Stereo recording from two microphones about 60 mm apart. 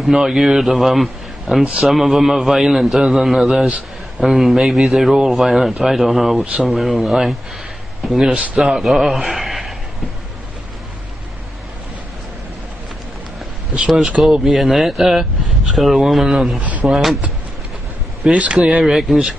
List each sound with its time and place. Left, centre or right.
0.0 s a man's voice: centre
1.6 s speech: centre
8.2 s speech: centre
14.1 s speech: centre
18.3 s speech: centre
18.9 s speech: centre